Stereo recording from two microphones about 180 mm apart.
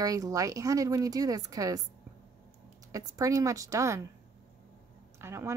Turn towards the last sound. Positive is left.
turn(degrees=-15)  # may be behind; listen again after turning